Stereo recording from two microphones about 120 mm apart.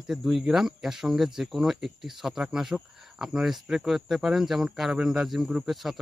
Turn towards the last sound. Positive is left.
turn(degrees=0)  # may be behind; listen again after turning